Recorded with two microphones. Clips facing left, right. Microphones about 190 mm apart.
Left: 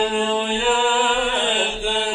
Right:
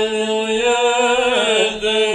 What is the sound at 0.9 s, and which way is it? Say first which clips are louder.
Chant: right 6 dB; 60° right (ahead or behind).